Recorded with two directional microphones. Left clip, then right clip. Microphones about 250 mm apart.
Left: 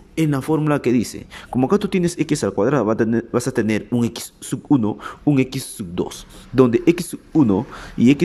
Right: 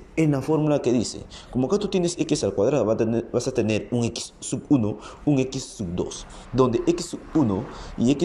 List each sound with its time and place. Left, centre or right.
0.1 s speech: left